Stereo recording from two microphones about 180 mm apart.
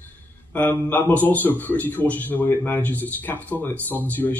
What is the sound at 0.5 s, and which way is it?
A man's voice, 10° left (ahead or behind).